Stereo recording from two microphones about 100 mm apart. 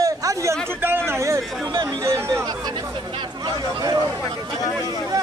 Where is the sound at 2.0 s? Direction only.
30° right (ahead or behind).